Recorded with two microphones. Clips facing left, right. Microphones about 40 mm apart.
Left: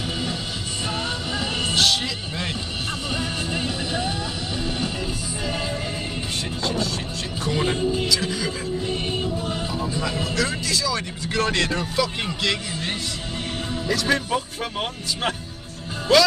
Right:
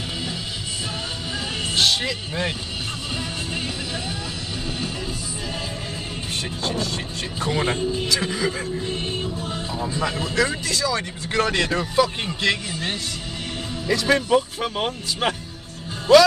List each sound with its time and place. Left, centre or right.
1.3 s music: left
1.8 s music: right
3.5 s music: left
6.7 s music: right
8.9 s music: centre
10.3 s speech: right
13.8 s speech: centre
14.3 s speech: centre